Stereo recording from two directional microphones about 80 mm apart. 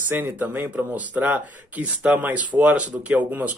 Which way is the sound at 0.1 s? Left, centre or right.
Right.